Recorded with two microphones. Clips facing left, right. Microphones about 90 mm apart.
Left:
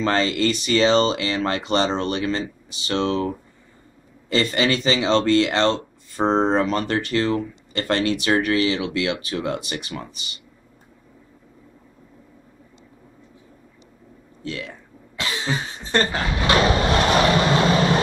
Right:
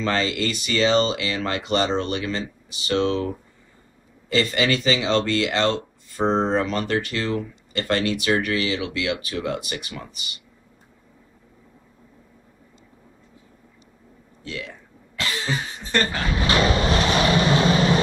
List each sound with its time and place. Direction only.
0.0 s speech: 35° left (ahead or behind)
4.3 s speech: 35° left (ahead or behind)
14.4 s speech: 40° left (ahead or behind)
15.1 s cough: 20° left (ahead or behind)
16.8 s vehicle: 50° left (ahead or behind)